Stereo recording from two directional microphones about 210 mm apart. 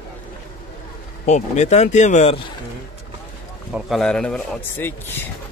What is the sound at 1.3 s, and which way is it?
Speech, 30° left (ahead or behind).